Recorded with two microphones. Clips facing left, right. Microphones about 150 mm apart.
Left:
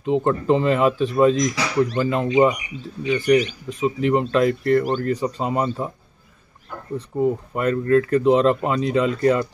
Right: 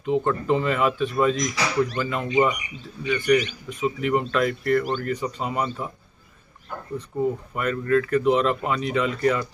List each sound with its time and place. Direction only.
0.0 s speech: 30° left (ahead or behind)
7.1 s speech: 25° left (ahead or behind)